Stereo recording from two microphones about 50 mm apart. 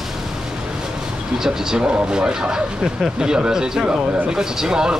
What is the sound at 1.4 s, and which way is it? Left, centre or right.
Speech, centre.